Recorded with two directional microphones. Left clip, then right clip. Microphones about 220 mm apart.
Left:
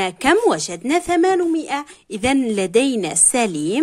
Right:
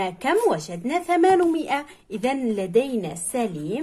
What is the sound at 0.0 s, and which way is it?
Speech, 35° left (ahead or behind).